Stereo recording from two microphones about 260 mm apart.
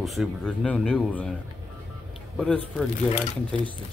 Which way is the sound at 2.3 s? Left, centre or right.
Centre.